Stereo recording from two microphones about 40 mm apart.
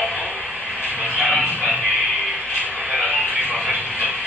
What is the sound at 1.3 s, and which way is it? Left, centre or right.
Music, right.